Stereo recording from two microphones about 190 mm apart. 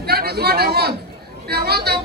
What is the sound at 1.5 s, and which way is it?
Speech, 55° right (ahead or behind).